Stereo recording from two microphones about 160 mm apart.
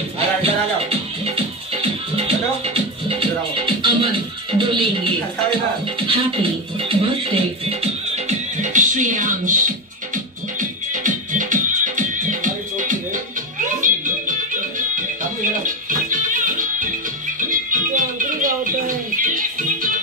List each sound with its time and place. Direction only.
0.4 s music: 40° right (ahead or behind)
5.9 s speech: 35° right (ahead or behind)
8.5 s music: 50° right (ahead or behind)